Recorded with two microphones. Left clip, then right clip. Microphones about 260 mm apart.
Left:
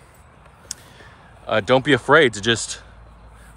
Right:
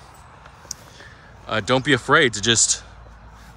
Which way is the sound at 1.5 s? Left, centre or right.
Centre.